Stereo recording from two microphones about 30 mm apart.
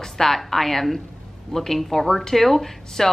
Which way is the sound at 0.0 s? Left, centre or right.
Centre.